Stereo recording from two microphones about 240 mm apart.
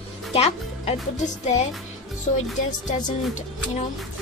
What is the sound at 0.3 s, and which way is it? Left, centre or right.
Speech, left.